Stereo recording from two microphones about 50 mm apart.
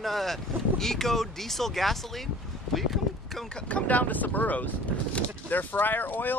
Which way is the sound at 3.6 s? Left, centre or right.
Left.